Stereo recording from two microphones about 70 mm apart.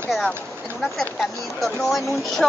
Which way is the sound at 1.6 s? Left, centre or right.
Centre.